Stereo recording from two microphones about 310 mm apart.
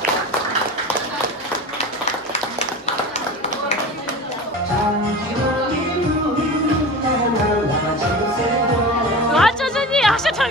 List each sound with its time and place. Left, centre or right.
9.3 s music: centre